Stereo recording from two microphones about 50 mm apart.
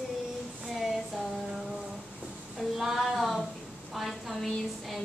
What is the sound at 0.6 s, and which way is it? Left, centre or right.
Female singing, centre.